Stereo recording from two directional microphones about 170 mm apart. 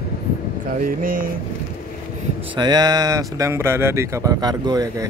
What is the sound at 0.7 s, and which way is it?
Speech, 55° right (ahead or behind).